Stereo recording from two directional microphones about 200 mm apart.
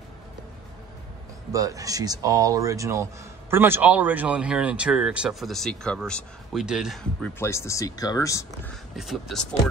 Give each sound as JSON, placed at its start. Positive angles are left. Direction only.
{"t": 1.5, "sound": "speech", "side_deg": -15}
{"t": 7.4, "sound": "speech", "side_deg": 15}
{"t": 8.9, "sound": "speech", "side_deg": 0}